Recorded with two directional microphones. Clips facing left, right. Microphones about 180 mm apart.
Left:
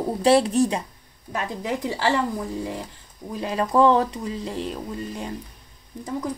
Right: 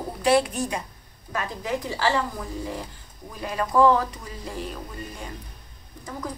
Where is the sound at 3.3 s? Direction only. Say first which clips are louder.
Left 2 dB; 30° left (ahead or behind).